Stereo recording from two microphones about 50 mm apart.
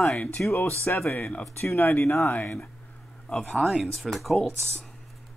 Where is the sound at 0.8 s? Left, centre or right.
Left.